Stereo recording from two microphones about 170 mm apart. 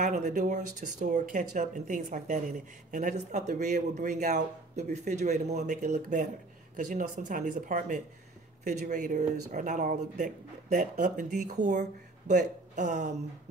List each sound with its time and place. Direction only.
0.0 s speech: 45° right (ahead or behind)